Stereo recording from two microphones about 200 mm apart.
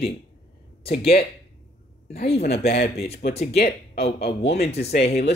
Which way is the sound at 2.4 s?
50° left (ahead or behind).